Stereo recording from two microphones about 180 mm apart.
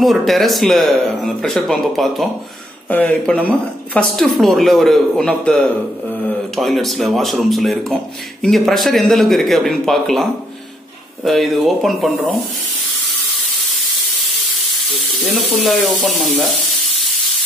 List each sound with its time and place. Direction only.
0.0 s speech: centre (ahead or behind)
11.2 s speech: centre (ahead or behind)
15.2 s speech: centre (ahead or behind)